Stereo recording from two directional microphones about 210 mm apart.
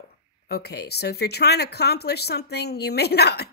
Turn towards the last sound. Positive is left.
turn(degrees=50)  # may be behind; listen again after turning